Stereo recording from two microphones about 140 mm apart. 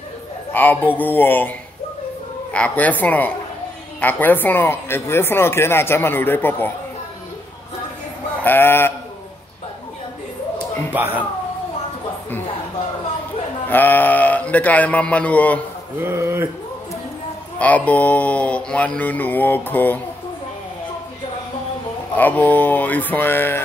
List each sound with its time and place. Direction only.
0.5 s speech: 15° left (ahead or behind)
2.5 s speech: 10° left (ahead or behind)
8.5 s speech: 15° left (ahead or behind)
13.7 s speech: 15° left (ahead or behind)
16.0 s speech: 15° right (ahead or behind)
17.6 s speech: 10° left (ahead or behind)
22.1 s speech: 10° left (ahead or behind)